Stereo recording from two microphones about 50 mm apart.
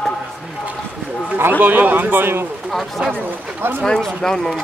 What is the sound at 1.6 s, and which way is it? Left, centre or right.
Speech, right.